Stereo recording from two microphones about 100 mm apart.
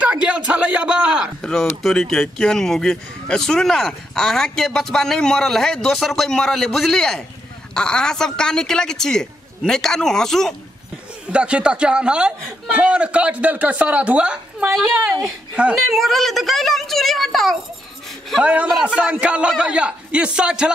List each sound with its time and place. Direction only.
0.0 s a man's voice: 15° right (ahead or behind)
1.4 s speech: 5° left (ahead or behind)
11.2 s a man's voice: 10° right (ahead or behind)
14.8 s speech: centre (ahead or behind)
15.5 s a man's voice: 10° right (ahead or behind)
15.9 s speech: centre (ahead or behind)
18.4 s a man's voice: 10° right (ahead or behind)